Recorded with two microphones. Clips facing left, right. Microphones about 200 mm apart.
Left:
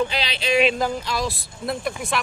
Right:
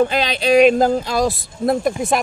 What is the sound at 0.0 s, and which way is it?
Speech, 50° right (ahead or behind).